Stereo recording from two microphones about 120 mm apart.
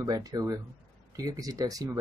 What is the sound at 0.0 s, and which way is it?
Speech, 30° right (ahead or behind).